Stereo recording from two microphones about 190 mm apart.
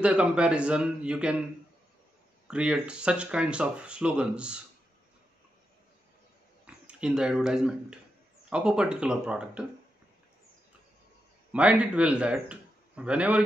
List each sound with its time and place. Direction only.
0.0 s speech: 5° right (ahead or behind)
2.4 s speech: 5° right (ahead or behind)
6.6 s speech: 5° right (ahead or behind)
11.5 s a man's voice: 5° right (ahead or behind)